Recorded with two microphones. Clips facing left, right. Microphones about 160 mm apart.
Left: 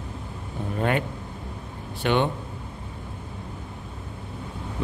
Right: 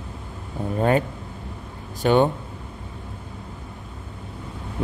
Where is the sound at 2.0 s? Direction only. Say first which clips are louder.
Right 5 dB; 40° right (ahead or behind).